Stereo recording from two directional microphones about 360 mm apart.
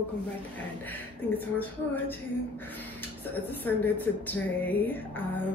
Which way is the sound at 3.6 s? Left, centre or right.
Centre.